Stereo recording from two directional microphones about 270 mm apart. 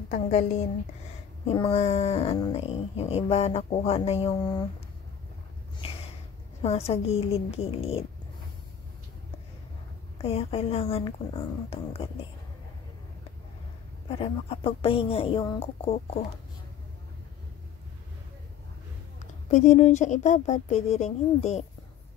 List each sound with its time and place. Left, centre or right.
0.1 s speech: left
6.6 s speech: left
10.1 s speech: left
14.0 s speech: left
19.5 s speech: left